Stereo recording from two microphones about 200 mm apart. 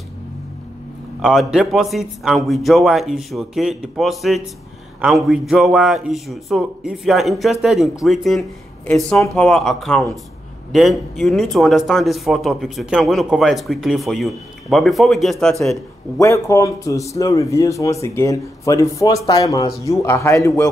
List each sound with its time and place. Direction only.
1.2 s speech: centre (ahead or behind)
16.2 s a man's voice: 15° left (ahead or behind)